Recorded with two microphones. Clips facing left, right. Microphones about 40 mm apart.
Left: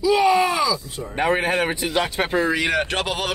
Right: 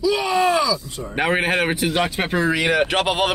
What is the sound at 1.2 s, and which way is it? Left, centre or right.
Speech, right.